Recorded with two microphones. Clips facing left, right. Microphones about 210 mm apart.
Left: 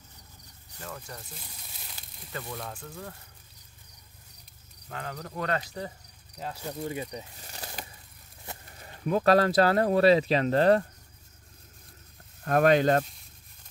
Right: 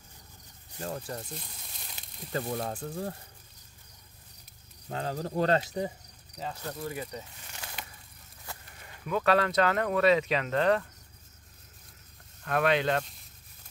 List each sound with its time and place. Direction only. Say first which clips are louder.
0.7 s speech: right 6 dB; 30° right (ahead or behind)
2.0 s a sound: even; 20° right (ahead or behind)
2.3 s speech: right 6 dB; 35° right (ahead or behind)
4.8 s speech: right 5 dB; 30° right (ahead or behind)
6.3 s speech: left 1 dB; 5° left (ahead or behind)
6.8 s speech: left 4 dB; 20° left (ahead or behind)
7.3 s a sound: left 3 dB; 35° left (ahead or behind)
8.6 s speech: left 8 dB; 35° left (ahead or behind)
12.4 s speech: left 5 dB; 45° left (ahead or behind)